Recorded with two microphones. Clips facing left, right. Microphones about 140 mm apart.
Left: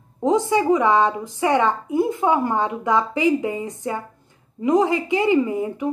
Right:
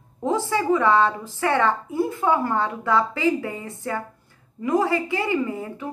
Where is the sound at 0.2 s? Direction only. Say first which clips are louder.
Left 5 dB; 20° left (ahead or behind).